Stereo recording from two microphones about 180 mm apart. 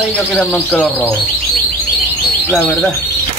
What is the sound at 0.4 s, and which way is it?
Speech, 10° left (ahead or behind).